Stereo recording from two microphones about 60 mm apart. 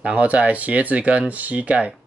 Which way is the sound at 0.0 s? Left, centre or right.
Right.